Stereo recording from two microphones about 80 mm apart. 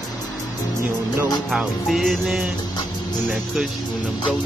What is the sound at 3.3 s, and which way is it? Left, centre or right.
Speech, centre.